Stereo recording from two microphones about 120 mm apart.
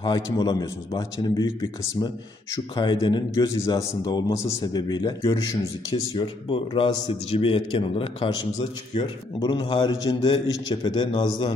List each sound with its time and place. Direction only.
0.0 s a man's voice: 35° left (ahead or behind)
9.4 s a man's voice: 40° left (ahead or behind)